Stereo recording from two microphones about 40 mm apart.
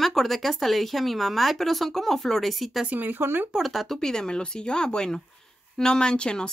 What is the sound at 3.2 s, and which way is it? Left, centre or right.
Speech, right.